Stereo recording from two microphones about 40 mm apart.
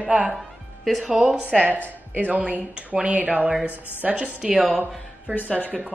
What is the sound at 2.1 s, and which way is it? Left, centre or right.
Speech, right.